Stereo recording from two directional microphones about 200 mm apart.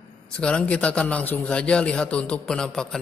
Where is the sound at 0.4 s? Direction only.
5° left (ahead or behind).